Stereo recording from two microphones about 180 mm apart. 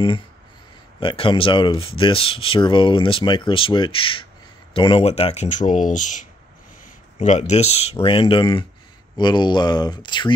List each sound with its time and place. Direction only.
0.9 s speech: 30° left (ahead or behind)